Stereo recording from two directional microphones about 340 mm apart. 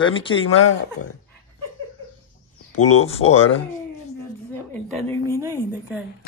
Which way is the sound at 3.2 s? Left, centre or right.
Left.